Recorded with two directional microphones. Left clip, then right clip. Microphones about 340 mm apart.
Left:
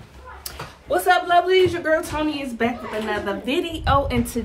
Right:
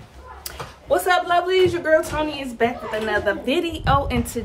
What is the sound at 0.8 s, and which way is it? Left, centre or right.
A man's voice, centre.